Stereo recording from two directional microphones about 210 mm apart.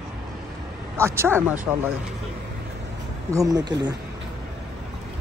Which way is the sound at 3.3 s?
15° right (ahead or behind).